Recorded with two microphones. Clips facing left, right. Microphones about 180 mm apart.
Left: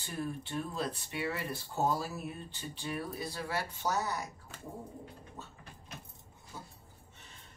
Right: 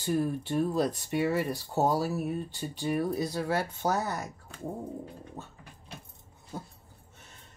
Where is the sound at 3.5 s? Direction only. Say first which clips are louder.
Right 3 dB; 50° right (ahead or behind).